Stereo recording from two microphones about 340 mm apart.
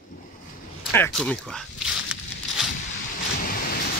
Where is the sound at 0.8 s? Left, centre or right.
Centre.